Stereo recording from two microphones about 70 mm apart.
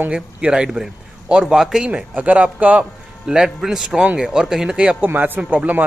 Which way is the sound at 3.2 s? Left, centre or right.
Centre.